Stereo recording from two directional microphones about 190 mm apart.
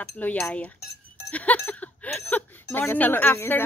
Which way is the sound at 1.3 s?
10° left (ahead or behind).